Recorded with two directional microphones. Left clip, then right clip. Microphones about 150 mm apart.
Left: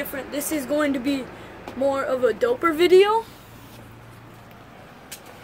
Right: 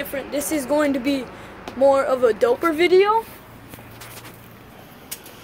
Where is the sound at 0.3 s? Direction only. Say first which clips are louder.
Right 4 dB; 10° left (ahead or behind).